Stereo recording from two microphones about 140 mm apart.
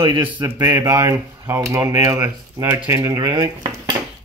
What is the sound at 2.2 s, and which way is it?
Speech, 15° right (ahead or behind).